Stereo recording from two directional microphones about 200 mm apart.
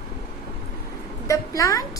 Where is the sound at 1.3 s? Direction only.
15° left (ahead or behind).